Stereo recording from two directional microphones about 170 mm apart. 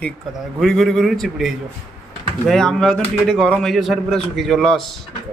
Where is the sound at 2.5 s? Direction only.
5° left (ahead or behind).